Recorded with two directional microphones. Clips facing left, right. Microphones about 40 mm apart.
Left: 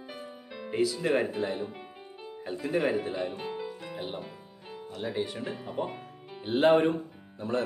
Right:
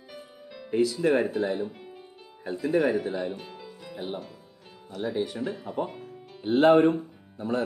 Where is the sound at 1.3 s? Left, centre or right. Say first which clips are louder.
Right 4 dB; centre.